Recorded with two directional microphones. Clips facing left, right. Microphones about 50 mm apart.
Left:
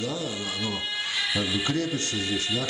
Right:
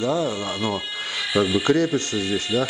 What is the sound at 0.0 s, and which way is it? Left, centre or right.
A man's voice, right.